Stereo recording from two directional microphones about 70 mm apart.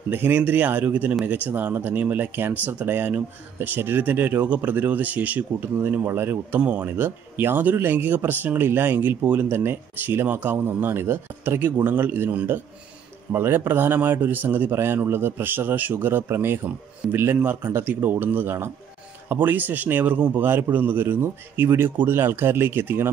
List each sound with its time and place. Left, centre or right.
0.1 s speech: right